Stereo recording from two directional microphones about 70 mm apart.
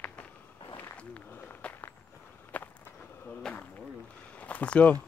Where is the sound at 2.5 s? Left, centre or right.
Left.